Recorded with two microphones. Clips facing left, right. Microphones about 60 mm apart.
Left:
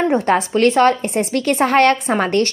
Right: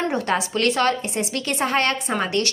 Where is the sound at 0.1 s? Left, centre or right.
Left.